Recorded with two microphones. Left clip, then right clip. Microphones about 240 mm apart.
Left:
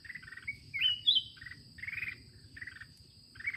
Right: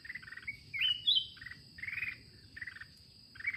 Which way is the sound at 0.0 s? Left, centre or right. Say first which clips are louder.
Even; centre.